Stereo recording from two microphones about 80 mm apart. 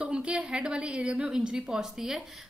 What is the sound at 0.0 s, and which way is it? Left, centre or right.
A woman's voice, centre.